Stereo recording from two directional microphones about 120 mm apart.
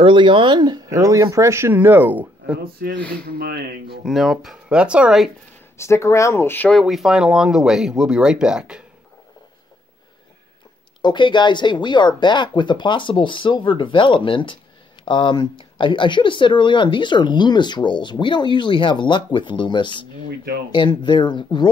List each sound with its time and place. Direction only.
0.0 s speech: 45° right (ahead or behind); by 2.6 s 15° right (ahead or behind)
4.0 s speech: centre (ahead or behind)
5.8 s speech: 25° left (ahead or behind)
6.8 s speech: centre (ahead or behind)
11.0 s speech: 40° left (ahead or behind)